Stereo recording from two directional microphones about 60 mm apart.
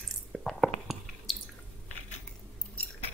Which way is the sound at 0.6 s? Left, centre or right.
Centre.